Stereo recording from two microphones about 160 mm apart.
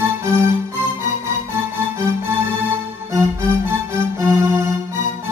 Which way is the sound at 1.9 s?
15° right (ahead or behind).